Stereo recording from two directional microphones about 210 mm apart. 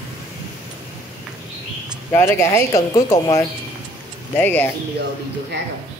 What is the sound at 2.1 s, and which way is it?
Speech, 10° left (ahead or behind).